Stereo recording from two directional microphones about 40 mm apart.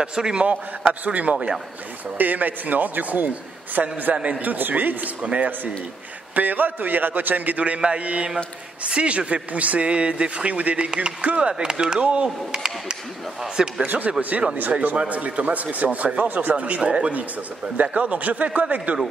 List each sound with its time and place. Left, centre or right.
0.0 s speech: right
1.0 s a man's voice: right
4.4 s a man's voice: right
5.2 s speech: right
6.3 s a man's voice: right
10.9 s speech: right
11.1 s a man's voice: right; by 13.8 s centre
13.8 s speech: right
16.3 s a man's voice: right
16.5 s speech: right